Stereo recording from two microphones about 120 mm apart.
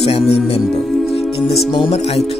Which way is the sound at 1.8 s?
60° left (ahead or behind).